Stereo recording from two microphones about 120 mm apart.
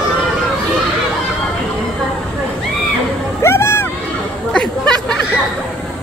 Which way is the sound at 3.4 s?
20° left (ahead or behind).